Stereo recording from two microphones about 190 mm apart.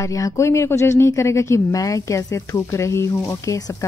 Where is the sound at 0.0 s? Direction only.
15° left (ahead or behind).